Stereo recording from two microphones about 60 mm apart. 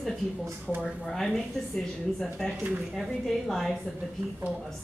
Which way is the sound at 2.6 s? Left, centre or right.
Right.